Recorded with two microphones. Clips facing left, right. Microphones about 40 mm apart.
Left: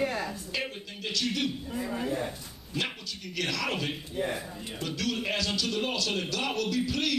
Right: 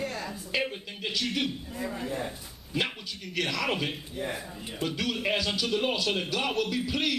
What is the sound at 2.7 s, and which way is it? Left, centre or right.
A man's voice, centre.